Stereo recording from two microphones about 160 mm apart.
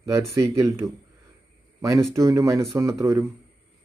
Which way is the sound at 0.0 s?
20° right (ahead or behind).